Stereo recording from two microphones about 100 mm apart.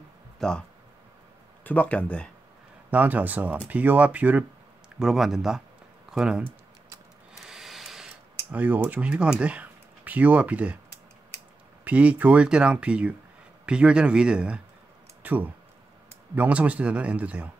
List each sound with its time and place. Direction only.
0.4 s speech: 5° left (ahead or behind)
2.9 s speech: 15° right (ahead or behind)
4.9 s speech: 5° right (ahead or behind)
7.4 s a sound: 5° right (ahead or behind)
8.5 s speech: 15° right (ahead or behind)
11.8 s speech: 15° right (ahead or behind)